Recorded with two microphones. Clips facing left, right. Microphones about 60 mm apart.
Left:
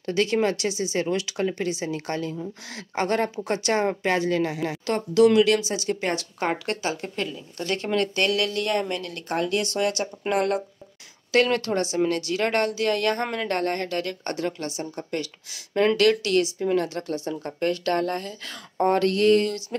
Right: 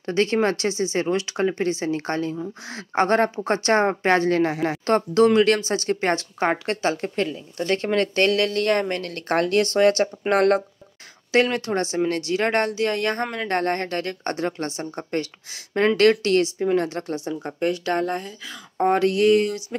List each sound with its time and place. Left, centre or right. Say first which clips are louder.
0.0 s a woman's voice: right 2 dB; right
11.3 s a woman's voice: right 1 dB; right
18.4 s speech: right 1 dB; centre
18.9 s speech: right 2 dB; right